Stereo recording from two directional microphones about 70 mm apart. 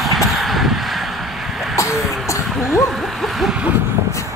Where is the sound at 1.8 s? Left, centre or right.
Left.